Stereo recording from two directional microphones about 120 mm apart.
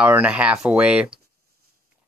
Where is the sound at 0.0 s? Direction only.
10° right (ahead or behind).